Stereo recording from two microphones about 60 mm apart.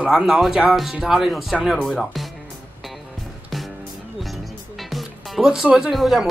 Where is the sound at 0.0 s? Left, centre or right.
Centre.